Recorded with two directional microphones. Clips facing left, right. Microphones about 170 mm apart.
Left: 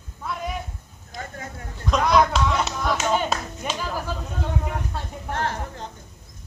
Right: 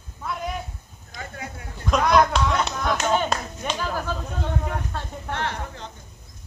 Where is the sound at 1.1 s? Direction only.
45° left (ahead or behind).